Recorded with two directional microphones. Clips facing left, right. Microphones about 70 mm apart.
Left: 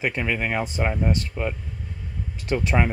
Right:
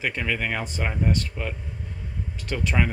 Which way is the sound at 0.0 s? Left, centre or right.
Centre.